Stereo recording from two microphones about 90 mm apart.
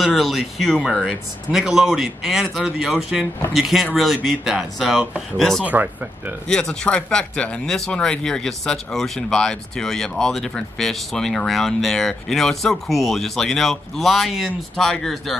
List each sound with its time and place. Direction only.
0.2 s speech: centre (ahead or behind)
5.7 s speech: 20° right (ahead or behind)
6.4 s speech: 10° left (ahead or behind)